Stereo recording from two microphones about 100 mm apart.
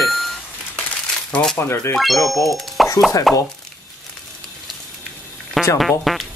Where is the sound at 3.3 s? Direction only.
Centre (ahead or behind).